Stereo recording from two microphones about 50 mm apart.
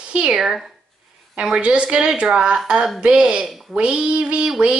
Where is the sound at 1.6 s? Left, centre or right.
Right.